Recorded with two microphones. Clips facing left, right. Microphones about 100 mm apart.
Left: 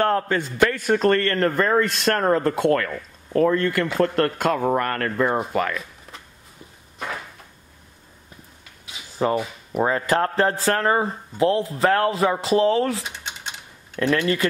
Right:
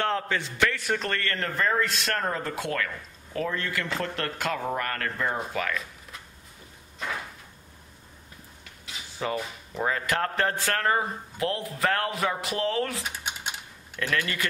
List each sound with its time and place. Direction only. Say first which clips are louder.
0.0 s a man's voice: left 7 dB; 45° left (ahead or behind)
9.3 s speech: left 7 dB; 55° left (ahead or behind)
9.8 s speech: left 5 dB; 35° left (ahead or behind)
13.0 s typing: even; 10° right (ahead or behind)
13.9 s speech: left 8 dB; 30° left (ahead or behind)